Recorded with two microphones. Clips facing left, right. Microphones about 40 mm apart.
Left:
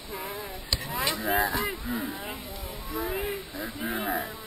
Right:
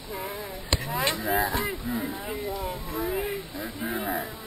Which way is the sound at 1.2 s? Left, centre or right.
Centre.